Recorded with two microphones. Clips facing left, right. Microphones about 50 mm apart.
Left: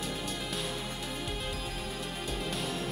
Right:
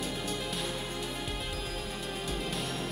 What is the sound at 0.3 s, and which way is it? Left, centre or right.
Music, centre.